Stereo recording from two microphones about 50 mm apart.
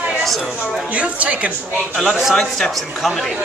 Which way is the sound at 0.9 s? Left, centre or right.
Right.